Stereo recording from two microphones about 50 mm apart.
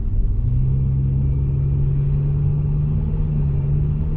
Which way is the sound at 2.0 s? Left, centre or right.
Centre.